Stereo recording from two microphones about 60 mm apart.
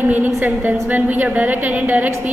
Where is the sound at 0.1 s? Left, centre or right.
Right.